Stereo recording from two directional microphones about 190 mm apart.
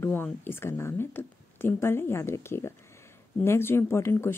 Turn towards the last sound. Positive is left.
turn(degrees=15)  # may be behind; listen again after turning